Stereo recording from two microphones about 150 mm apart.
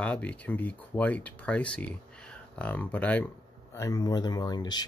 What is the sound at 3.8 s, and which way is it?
Speech, 25° left (ahead or behind).